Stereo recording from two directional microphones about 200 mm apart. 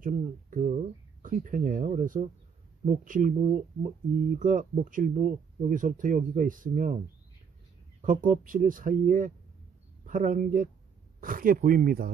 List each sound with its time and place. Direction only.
0.0 s speech: 40° right (ahead or behind)
8.0 s speech: 40° right (ahead or behind)